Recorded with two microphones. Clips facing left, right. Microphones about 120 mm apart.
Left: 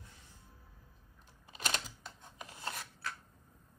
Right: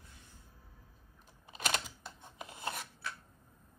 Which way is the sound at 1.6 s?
15° right (ahead or behind).